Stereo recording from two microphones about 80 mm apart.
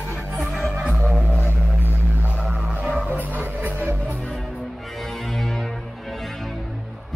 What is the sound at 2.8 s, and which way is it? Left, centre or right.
Music, centre.